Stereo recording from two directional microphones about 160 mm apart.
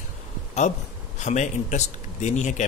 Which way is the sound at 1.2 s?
50° left (ahead or behind).